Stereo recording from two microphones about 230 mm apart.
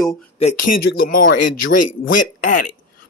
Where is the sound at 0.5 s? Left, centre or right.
Left.